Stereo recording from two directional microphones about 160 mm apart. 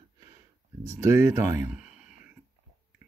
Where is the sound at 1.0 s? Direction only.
15° right (ahead or behind).